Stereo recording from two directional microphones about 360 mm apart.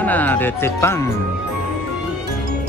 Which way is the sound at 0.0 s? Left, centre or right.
Centre.